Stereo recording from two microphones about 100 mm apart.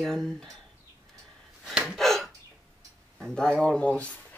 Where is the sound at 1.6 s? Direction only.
5° right (ahead or behind).